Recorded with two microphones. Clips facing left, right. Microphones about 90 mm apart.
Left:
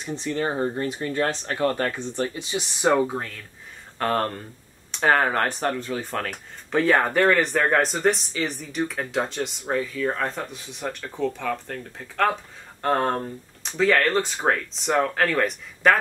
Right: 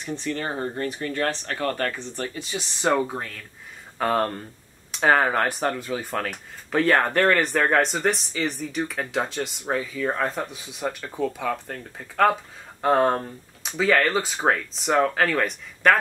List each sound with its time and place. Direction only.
0.2 s speech: 20° left (ahead or behind)
2.9 s speech: centre (ahead or behind)